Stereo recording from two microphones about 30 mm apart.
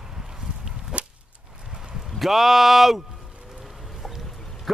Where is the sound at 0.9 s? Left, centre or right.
Right.